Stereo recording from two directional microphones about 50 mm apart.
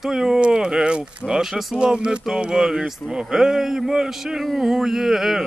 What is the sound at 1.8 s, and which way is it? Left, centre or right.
Speech, centre.